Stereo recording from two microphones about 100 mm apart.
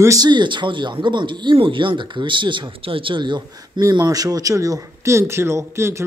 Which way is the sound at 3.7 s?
35° right (ahead or behind).